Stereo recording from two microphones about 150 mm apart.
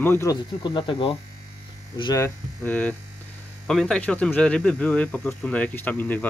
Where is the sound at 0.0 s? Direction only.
15° left (ahead or behind).